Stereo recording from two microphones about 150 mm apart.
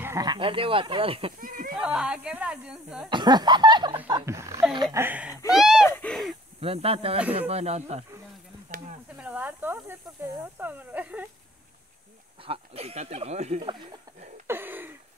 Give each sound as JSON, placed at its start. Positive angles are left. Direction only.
{"t": 0.0, "sound": "speech", "side_deg": -25}
{"t": 1.8, "sound": "speech", "side_deg": -5}
{"t": 3.1, "sound": "speech", "side_deg": -30}
{"t": 4.1, "sound": "speech", "side_deg": -20}
{"t": 5.5, "sound": "wheeze", "side_deg": 0}
{"t": 5.9, "sound": "owl", "side_deg": 10}
{"t": 6.6, "sound": "speech", "side_deg": -40}
{"t": 9.2, "sound": "speech", "side_deg": -10}
{"t": 12.4, "sound": "speech", "side_deg": -40}
{"t": 13.6, "sound": "speech", "side_deg": -30}
{"t": 14.5, "sound": "a sound", "side_deg": -15}